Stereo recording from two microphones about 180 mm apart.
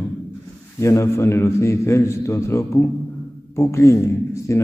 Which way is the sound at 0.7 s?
15° left (ahead or behind).